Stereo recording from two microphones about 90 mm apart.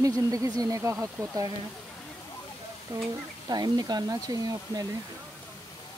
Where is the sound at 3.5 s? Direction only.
50° right (ahead or behind).